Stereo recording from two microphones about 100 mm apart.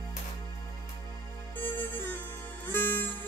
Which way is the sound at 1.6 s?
20° left (ahead or behind).